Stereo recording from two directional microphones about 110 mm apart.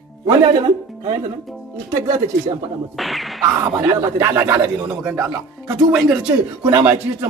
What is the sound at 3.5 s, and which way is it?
Speech, 25° right (ahead or behind).